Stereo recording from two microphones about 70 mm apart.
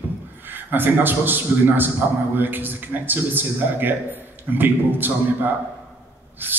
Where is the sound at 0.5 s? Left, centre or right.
Right.